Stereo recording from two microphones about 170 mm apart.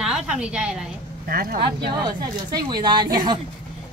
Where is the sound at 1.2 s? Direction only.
55° right (ahead or behind).